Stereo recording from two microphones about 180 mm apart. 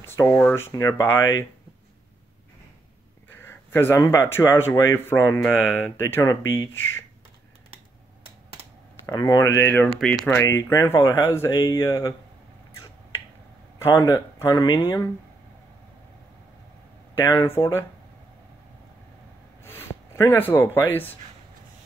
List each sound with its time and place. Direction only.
0.2 s speech: 10° left (ahead or behind)
3.3 s a sound: 10° left (ahead or behind)
4.0 s speech: 15° left (ahead or behind)
9.0 s speech: 20° left (ahead or behind)
13.7 s speech: 15° left (ahead or behind)
17.2 s speech: 15° left (ahead or behind)
19.6 s a sound: 15° left (ahead or behind)